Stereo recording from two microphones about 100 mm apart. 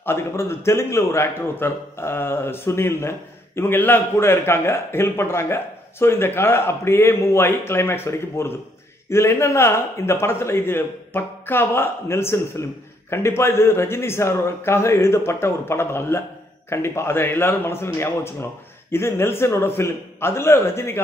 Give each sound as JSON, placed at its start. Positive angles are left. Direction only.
{"t": 0.0, "sound": "a man's voice", "side_deg": 25}